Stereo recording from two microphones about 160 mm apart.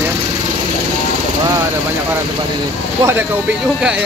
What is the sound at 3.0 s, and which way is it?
Speech, 15° right (ahead or behind).